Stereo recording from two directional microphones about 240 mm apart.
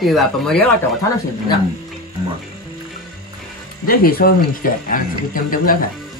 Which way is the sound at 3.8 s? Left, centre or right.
Left.